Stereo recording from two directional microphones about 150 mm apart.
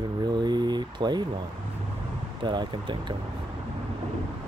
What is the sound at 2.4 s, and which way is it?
Speech, 30° right (ahead or behind).